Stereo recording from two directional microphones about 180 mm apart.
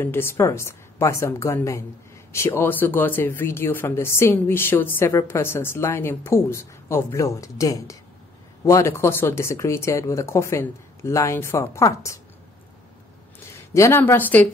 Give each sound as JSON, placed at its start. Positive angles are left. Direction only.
{"t": 0.0, "sound": "speech", "side_deg": 15}
{"t": 13.7, "sound": "speech", "side_deg": 15}